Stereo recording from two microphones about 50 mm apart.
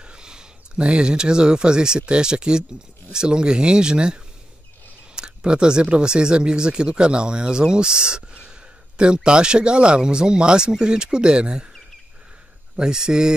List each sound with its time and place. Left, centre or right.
0.0 s speech: centre
12.7 s speech: centre